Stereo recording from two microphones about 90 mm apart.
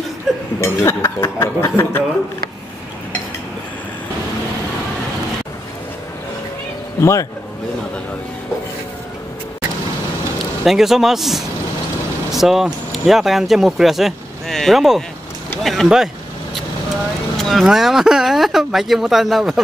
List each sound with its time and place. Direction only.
0.6 s speech: 30° left (ahead or behind)
7.0 s a man's voice: 35° left (ahead or behind)
10.6 s speech: 5° right (ahead or behind)
17.4 s speech: centre (ahead or behind)